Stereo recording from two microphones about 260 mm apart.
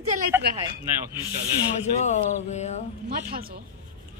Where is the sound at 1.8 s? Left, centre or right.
Left.